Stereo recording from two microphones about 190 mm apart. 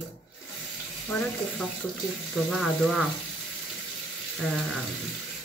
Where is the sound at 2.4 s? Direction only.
Centre (ahead or behind).